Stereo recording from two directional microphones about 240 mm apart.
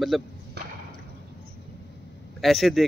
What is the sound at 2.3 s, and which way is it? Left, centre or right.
Speech, centre.